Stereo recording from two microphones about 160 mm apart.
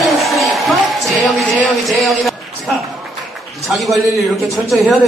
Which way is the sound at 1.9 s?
Centre (ahead or behind).